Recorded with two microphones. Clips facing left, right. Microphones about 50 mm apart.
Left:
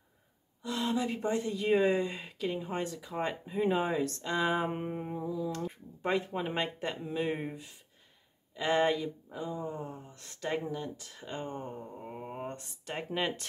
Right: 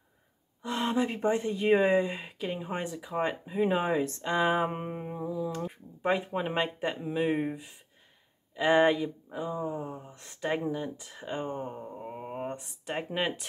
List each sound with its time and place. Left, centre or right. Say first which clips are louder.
0.6 s speech: right 3 dB; right; by 13.5 s centre